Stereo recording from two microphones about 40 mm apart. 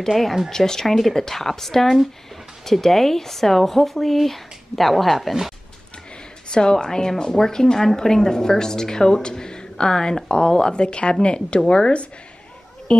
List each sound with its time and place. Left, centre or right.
0.5 s a woman's voice: centre
6.5 s a woman's voice: centre